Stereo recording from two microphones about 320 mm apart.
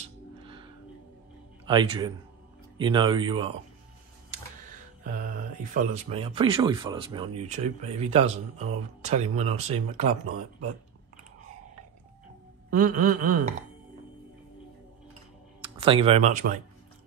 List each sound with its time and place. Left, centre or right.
0.4 s music: centre
1.7 s speech: centre
5.0 s speech: right
12.7 s speech: right
15.6 s speech: centre